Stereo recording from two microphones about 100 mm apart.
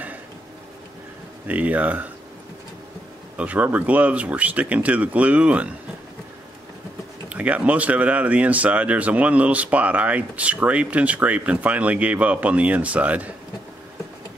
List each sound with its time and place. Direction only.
1.5 s speech: 15° right (ahead or behind)
3.3 s speech: 15° right (ahead or behind)
7.2 s speech: 15° right (ahead or behind)